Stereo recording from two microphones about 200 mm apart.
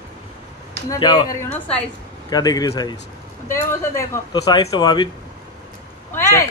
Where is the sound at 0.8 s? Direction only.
20° left (ahead or behind).